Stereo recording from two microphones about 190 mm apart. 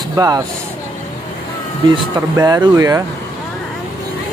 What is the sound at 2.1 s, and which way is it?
Speech, 15° right (ahead or behind).